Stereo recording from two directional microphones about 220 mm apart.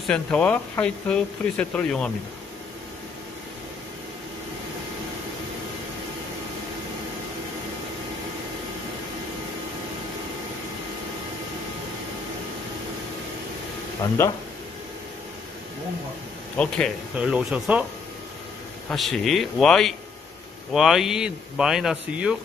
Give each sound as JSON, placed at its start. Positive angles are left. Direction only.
{"t": 0.0, "sound": "speech", "side_deg": 5}
{"t": 16.5, "sound": "speech", "side_deg": 5}
{"t": 18.9, "sound": "speech", "side_deg": 0}